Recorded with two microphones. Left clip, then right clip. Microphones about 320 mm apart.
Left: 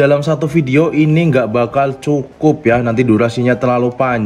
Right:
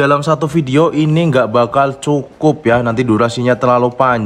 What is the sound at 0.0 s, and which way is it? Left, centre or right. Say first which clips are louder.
A man's voice: even; centre.